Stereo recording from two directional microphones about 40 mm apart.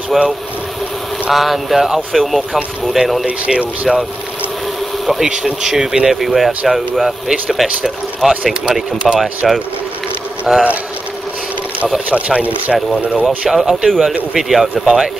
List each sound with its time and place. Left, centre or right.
0.1 s speech: centre
1.3 s speech: centre
3.3 s speech: right
5.2 s speech: centre
10.5 s speech: right
12.1 s speech: right
13.5 s speech: centre
13.8 s speech: centre